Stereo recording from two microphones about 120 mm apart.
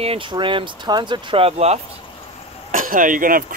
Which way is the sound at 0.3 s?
45° right (ahead or behind).